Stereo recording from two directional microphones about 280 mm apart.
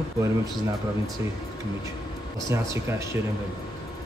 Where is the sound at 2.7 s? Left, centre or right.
Centre.